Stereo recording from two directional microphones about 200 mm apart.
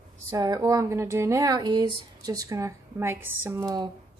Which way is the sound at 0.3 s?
20° right (ahead or behind).